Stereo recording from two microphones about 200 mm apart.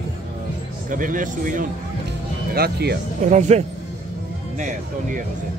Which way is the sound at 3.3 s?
35° right (ahead or behind).